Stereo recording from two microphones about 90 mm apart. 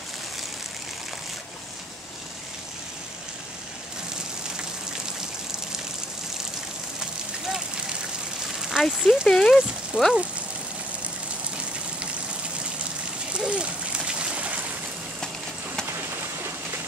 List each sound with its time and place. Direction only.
7.0 s vehicle: 5° right (ahead or behind)
8.5 s speech: 5° right (ahead or behind)
13.3 s a sound: 10° right (ahead or behind)